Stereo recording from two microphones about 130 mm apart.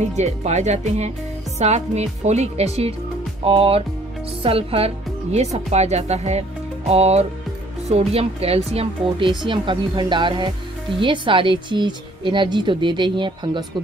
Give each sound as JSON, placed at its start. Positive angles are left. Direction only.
{"t": 0.0, "sound": "a woman's voice", "side_deg": -60}